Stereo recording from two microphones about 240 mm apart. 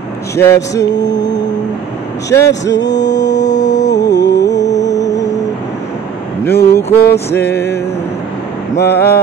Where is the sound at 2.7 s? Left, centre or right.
Left.